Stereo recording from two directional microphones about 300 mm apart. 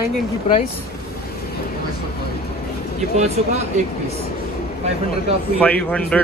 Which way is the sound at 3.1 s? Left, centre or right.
Right.